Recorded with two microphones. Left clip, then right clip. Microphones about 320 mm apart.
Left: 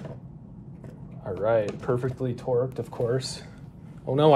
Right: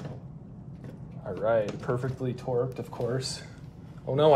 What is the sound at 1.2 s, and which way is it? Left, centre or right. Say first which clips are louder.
Speech: left 2 dB; left.